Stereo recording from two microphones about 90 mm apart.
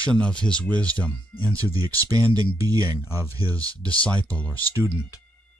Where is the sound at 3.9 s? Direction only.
15° left (ahead or behind).